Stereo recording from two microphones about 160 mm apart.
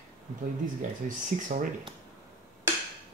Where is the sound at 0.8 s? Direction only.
55° right (ahead or behind).